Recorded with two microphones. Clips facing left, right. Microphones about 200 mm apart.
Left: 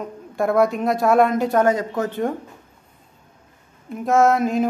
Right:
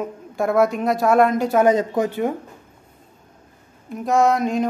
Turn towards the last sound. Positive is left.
turn(degrees=0)  # may be behind; listen again after turning